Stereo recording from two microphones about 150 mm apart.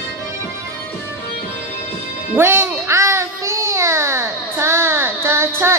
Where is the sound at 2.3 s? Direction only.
15° right (ahead or behind).